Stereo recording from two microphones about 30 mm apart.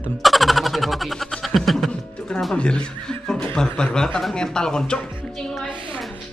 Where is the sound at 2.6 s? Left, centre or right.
Left.